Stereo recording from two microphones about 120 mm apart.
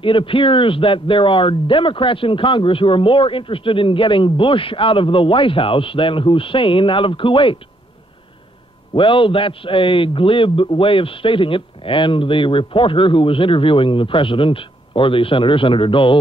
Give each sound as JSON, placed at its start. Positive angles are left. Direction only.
{"t": 0.0, "sound": "speech", "side_deg": 45}
{"t": 8.9, "sound": "speech", "side_deg": 45}